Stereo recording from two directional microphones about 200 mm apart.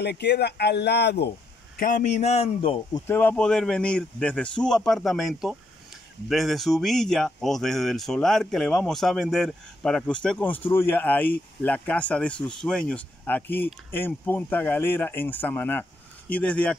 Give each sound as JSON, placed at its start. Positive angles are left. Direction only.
{"t": 0.0, "sound": "speech", "side_deg": 55}
{"t": 1.8, "sound": "a man's voice", "side_deg": 40}
{"t": 3.1, "sound": "speech", "side_deg": 10}